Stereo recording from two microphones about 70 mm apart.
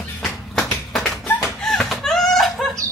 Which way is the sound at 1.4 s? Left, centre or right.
Centre.